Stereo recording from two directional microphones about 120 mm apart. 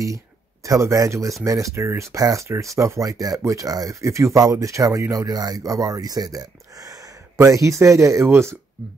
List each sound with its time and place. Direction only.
0.7 s speech: 25° right (ahead or behind)